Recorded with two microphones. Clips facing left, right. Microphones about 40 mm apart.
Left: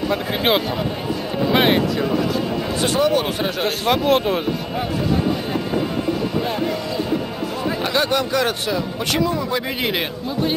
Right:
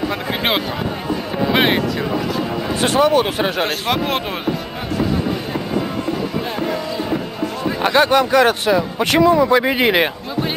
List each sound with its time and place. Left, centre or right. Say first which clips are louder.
0.1 s speech: left 1 dB; centre
2.8 s a man's voice: right 4 dB; right
3.3 s speech: right 4 dB; right
3.6 s speech: left 1 dB; centre
6.6 s music: right 1 dB; centre
7.8 s a man's voice: right 7 dB; right